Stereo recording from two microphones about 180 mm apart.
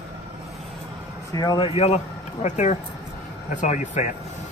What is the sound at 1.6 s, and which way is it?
Speech, 35° left (ahead or behind).